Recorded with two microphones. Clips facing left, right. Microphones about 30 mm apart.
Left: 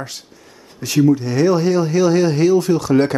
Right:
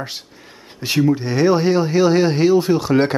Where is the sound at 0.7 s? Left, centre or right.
Right.